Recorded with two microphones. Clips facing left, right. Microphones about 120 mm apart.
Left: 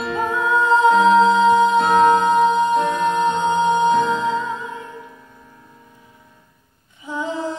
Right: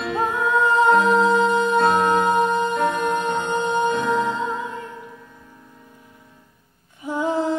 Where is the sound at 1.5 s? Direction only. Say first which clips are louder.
Left 3 dB; 60° right (ahead or behind).